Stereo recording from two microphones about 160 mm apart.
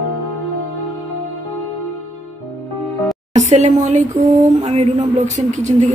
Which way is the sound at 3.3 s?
45° right (ahead or behind).